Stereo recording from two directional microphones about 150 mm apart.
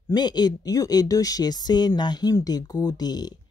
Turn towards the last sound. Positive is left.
turn(degrees=25)  # may be behind; listen again after turning